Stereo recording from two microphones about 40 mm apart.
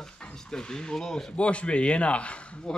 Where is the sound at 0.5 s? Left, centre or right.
Centre.